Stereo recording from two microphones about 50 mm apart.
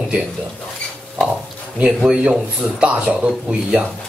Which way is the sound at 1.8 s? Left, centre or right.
Centre.